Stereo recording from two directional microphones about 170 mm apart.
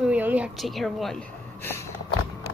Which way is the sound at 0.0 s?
10° right (ahead or behind).